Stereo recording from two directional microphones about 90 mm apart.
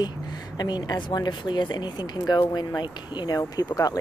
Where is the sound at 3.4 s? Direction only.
40° left (ahead or behind).